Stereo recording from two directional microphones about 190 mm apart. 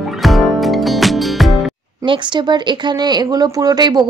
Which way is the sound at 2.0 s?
25° right (ahead or behind).